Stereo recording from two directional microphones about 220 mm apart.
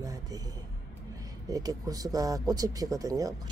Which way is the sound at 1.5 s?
15° right (ahead or behind).